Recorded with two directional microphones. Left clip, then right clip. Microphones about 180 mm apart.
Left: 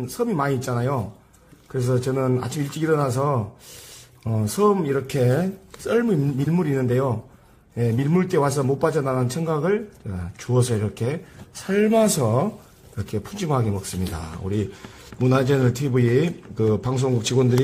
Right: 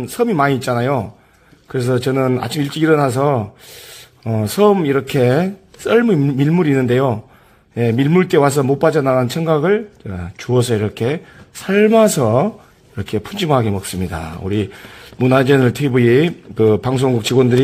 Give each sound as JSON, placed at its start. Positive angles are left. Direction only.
{"t": 0.2, "sound": "a man's voice", "side_deg": -40}